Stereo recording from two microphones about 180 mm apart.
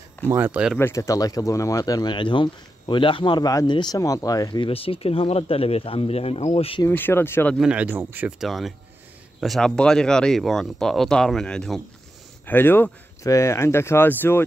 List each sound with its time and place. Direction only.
0.3 s speech: 10° right (ahead or behind)
0.7 s speech: 15° left (ahead or behind); by 6.8 s 30° left (ahead or behind)
6.9 s speech: 10° left (ahead or behind)
7.5 s speech: 5° right (ahead or behind)
8.5 s speech: centre (ahead or behind)